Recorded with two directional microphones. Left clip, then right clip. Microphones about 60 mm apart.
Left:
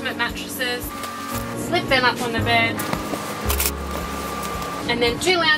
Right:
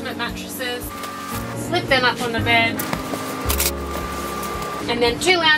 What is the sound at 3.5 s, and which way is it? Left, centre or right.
Music, centre.